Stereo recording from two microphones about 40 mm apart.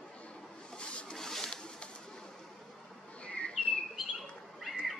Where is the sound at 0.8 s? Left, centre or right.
Left.